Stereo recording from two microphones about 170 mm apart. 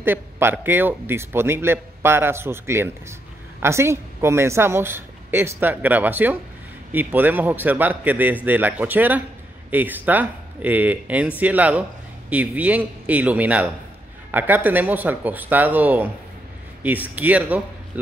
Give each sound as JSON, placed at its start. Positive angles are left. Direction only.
{"t": 0.0, "sound": "a man's voice", "side_deg": -10}